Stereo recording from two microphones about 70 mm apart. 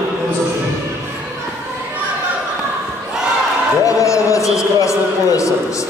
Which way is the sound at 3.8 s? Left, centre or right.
Left.